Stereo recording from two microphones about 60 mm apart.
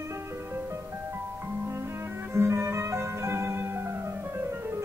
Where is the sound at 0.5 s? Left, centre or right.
Right.